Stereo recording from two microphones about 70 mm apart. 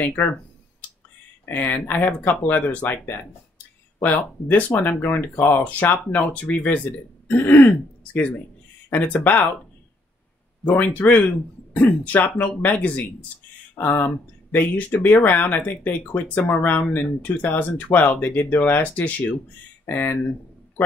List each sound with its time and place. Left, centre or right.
0.0 s a sound: left
1.4 s speech: left
7.3 s throat clearing: left
7.6 s speech: left
10.7 s speech: left
16.3 s speech: centre